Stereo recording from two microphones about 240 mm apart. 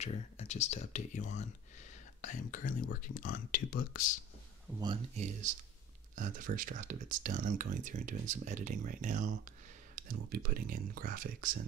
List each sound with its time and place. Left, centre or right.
0.0 s speech: left
5.1 s speech: right